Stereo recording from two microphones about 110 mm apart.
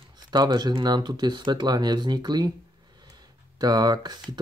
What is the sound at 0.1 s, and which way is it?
Speech, 40° right (ahead or behind).